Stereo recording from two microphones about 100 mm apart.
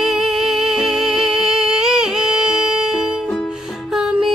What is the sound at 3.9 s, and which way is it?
Music, 5° right (ahead or behind).